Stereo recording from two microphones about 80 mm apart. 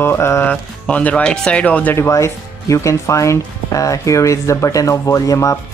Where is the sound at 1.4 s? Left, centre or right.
Centre.